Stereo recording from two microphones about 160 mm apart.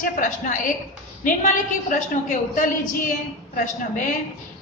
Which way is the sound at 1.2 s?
55° left (ahead or behind).